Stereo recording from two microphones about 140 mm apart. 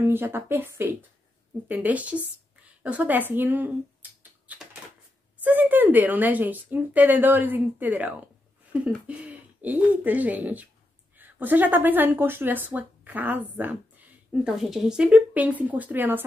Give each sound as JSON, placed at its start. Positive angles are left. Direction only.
{"t": 0.0, "sound": "a woman's voice", "side_deg": -15}
{"t": 5.4, "sound": "speech", "side_deg": -15}